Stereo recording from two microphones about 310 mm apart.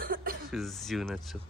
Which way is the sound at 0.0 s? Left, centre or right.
Right.